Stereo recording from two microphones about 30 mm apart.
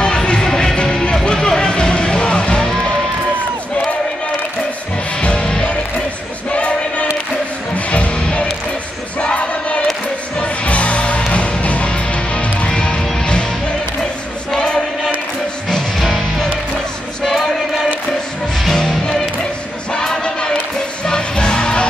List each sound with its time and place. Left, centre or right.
0.0 s music: left
2.6 s music: centre
5.2 s music: left
6.5 s choir: left
8.1 s music: left
9.2 s a sound: left
10.4 s music: left
12.6 s music: left
16.0 s music: centre
18.7 s music: centre; by 21.8 s left